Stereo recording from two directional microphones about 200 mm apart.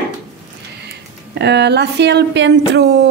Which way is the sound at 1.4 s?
60° right (ahead or behind).